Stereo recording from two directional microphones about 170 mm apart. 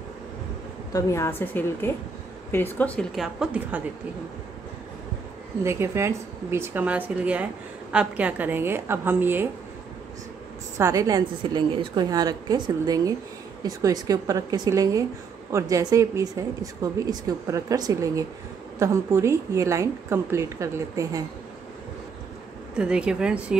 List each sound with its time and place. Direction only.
0.9 s a woman's voice: 15° left (ahead or behind)
3.2 s a woman's voice: 5° right (ahead or behind)
5.6 s a woman's voice: 15° right (ahead or behind)
10.8 s a woman's voice: 20° right (ahead or behind)
22.8 s a woman's voice: 5° right (ahead or behind)